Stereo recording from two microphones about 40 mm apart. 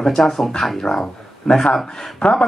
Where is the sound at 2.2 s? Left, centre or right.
Left.